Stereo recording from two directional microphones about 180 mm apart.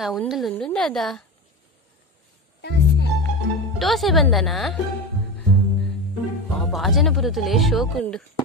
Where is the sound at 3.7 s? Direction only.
Centre (ahead or behind).